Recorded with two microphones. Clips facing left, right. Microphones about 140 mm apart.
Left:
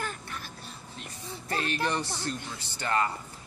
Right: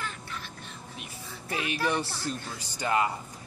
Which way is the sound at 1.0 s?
10° right (ahead or behind).